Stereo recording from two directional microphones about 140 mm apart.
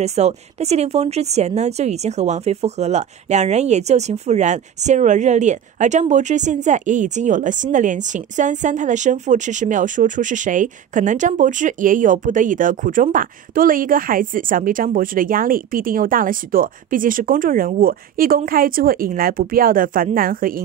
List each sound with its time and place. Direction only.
0.0 s speech: 50° right (ahead or behind); by 20.6 s 90° right